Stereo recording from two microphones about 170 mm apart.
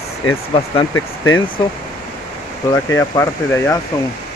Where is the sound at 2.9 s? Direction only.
20° left (ahead or behind).